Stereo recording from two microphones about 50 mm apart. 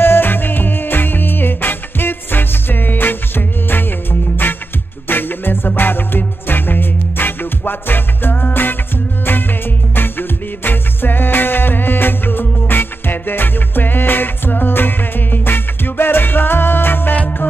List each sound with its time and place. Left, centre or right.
0.0 s music: left